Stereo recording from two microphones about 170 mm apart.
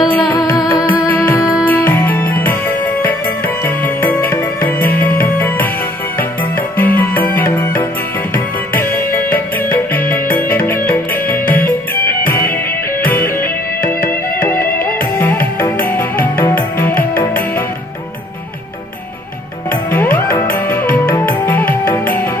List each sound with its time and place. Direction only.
0.4 s music: 15° left (ahead or behind)
3.6 s music: 10° left (ahead or behind)
6.8 s music: 10° left (ahead or behind)
19.9 s music: 10° left (ahead or behind)